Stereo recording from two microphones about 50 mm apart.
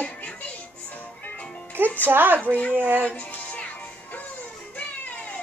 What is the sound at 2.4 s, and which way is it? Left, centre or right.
Speech, left.